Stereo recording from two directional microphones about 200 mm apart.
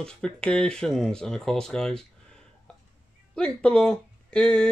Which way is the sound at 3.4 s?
5° left (ahead or behind).